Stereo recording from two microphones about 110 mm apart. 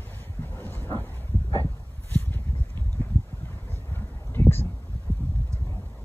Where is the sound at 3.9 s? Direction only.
20° left (ahead or behind).